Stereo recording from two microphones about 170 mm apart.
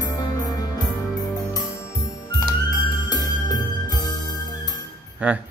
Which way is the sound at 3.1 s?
25° left (ahead or behind).